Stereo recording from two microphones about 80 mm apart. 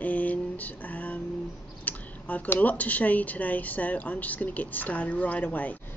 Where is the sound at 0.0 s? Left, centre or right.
Centre.